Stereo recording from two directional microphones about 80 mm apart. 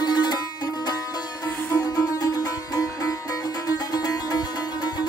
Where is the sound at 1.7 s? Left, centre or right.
Left.